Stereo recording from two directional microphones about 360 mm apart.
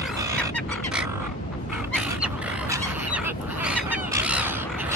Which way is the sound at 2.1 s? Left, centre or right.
Centre.